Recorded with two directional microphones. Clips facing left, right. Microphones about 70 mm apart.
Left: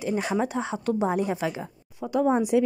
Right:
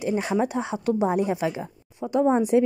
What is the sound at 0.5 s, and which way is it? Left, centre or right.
A woman's voice, centre.